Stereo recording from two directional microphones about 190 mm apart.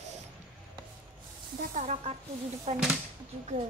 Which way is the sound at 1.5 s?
40° right (ahead or behind).